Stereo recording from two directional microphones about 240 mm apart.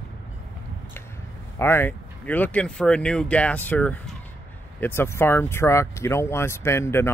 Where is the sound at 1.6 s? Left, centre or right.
Centre.